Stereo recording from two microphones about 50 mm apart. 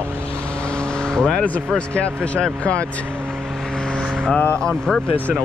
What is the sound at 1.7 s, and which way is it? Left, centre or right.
Speech, left.